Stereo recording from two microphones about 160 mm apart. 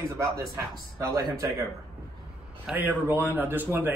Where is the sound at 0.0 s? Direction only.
20° right (ahead or behind).